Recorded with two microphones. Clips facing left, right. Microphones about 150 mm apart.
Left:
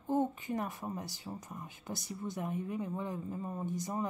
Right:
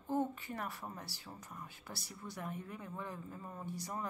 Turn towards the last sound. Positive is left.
turn(degrees=20)  # may be behind; listen again after turning